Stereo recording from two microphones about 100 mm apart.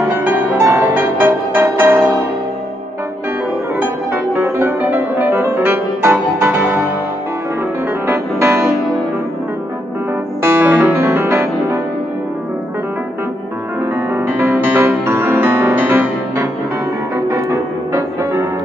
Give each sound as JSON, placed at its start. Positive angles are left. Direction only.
{"t": 0.2, "sound": "music", "side_deg": -20}
{"t": 3.7, "sound": "music", "side_deg": -20}
{"t": 8.1, "sound": "music", "side_deg": -25}
{"t": 10.4, "sound": "music", "side_deg": -20}
{"t": 13.9, "sound": "music", "side_deg": -20}
{"t": 17.9, "sound": "music", "side_deg": -30}